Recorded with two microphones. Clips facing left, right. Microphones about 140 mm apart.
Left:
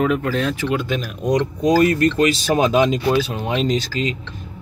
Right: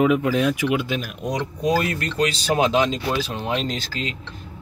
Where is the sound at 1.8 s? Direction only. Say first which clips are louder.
Left 10 dB; 50° left (ahead or behind).